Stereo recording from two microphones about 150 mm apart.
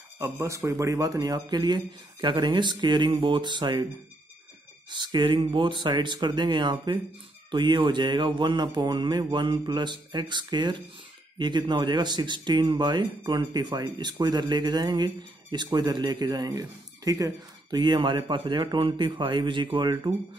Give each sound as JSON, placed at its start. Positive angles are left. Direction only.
{"t": 0.2, "sound": "speech", "side_deg": -20}
{"t": 4.8, "sound": "speech", "side_deg": -30}